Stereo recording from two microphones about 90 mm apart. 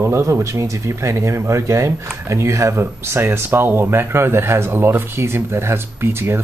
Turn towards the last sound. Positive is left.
turn(degrees=-30)  # may be behind; listen again after turning